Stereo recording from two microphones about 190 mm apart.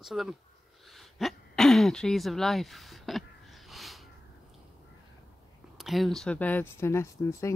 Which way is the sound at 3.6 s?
Centre (ahead or behind).